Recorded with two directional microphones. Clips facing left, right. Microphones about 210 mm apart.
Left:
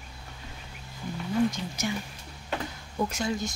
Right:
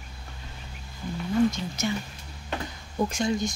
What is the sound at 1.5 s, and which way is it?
Speech, 10° left (ahead or behind).